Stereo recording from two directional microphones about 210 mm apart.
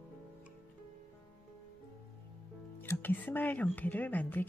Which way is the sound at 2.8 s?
10° left (ahead or behind).